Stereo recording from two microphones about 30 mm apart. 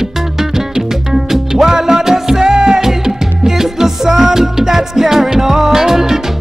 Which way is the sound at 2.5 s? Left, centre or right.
Right.